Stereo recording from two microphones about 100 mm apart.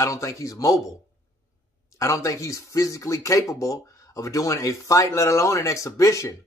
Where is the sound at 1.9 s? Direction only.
30° left (ahead or behind).